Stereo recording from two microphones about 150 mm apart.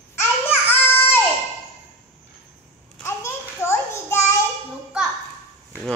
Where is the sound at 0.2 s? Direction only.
15° left (ahead or behind).